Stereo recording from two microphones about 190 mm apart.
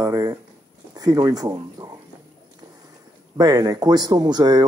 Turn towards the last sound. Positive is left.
turn(degrees=-20)  # may be behind; listen again after turning